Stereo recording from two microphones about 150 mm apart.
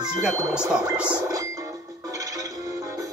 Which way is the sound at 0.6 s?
10° right (ahead or behind).